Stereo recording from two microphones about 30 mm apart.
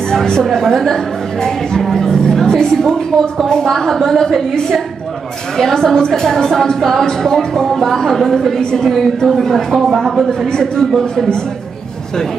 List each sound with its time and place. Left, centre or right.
0.1 s a woman's voice: centre
9.8 s speech: centre
10.5 s speech: left
10.9 s a woman's voice: centre